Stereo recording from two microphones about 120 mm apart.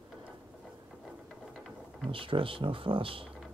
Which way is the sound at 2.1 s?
45° right (ahead or behind).